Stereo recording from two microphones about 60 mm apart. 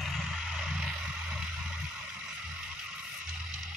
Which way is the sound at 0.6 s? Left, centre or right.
Centre.